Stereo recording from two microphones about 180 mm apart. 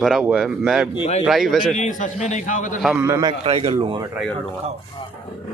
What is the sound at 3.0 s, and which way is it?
Speech, 20° right (ahead or behind).